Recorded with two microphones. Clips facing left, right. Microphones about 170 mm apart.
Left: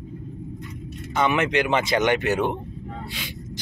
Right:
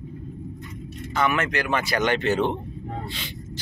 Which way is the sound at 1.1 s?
20° left (ahead or behind).